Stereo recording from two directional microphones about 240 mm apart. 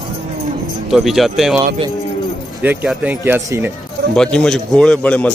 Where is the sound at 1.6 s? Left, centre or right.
Right.